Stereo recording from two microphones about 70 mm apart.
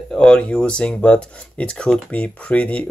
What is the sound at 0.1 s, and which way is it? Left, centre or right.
Speech, centre.